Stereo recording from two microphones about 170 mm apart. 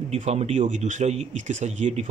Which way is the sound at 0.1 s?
40° right (ahead or behind).